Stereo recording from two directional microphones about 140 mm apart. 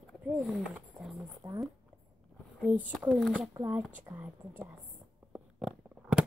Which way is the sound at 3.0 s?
Centre (ahead or behind).